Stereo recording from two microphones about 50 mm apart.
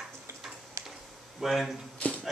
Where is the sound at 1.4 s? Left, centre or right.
Centre.